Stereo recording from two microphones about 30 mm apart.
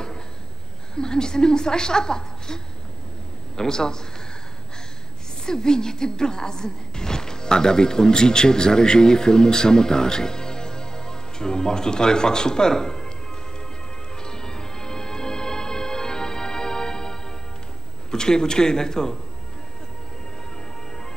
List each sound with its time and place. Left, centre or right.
0.9 s a woman's voice: left
5.4 s speech: left
14.2 s music: left
18.1 s a woman's voice: left